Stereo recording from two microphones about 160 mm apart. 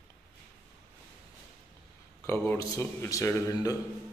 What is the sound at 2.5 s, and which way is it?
A man's voice, 15° left (ahead or behind).